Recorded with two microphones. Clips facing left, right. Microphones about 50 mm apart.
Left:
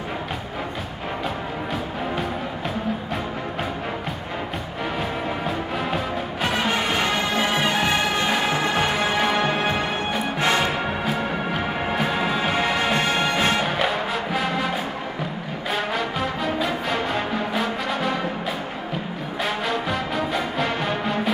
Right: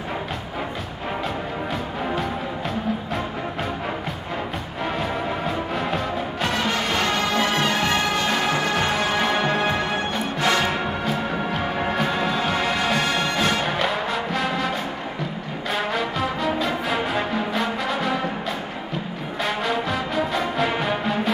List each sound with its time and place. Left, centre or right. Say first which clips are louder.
5.8 s music: right 1 dB; centre
12.9 s music: left 1 dB; centre
13.7 s music: even; centre
15.7 s music: right 1 dB; centre
19.4 s music: right 1 dB; centre